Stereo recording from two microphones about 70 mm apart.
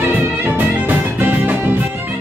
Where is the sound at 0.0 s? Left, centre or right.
Right.